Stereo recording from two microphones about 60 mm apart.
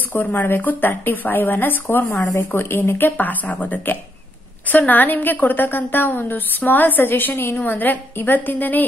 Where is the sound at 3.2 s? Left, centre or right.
Left.